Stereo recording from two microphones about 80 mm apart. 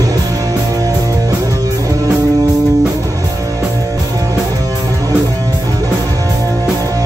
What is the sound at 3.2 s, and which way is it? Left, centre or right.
Music, right.